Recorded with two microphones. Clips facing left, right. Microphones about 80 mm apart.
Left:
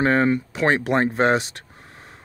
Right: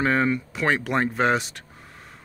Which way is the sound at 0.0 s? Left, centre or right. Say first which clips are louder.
Left 3 dB; left.